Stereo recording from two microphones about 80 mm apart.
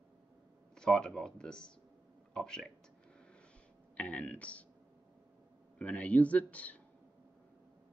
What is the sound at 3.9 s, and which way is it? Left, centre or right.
Speech, centre.